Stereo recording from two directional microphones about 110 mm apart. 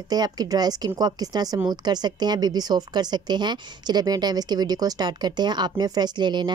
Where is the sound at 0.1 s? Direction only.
35° right (ahead or behind).